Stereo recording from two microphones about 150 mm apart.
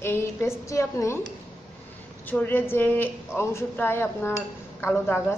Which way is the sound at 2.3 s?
10° left (ahead or behind).